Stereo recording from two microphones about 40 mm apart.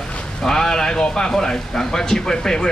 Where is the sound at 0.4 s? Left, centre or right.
Centre.